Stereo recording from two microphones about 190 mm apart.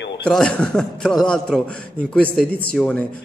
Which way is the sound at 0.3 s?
5° left (ahead or behind).